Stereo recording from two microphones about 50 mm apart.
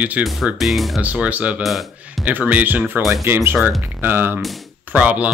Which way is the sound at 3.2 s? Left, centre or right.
Right.